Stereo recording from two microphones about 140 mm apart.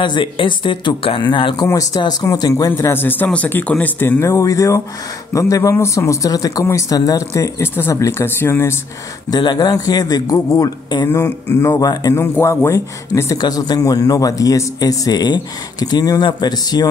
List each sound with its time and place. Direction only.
0.0 s a man's voice: 35° left (ahead or behind); by 8.7 s 15° left (ahead or behind)
9.3 s a man's voice: 30° left (ahead or behind)